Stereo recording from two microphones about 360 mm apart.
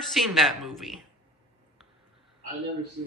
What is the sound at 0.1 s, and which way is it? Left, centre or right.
Speech, centre.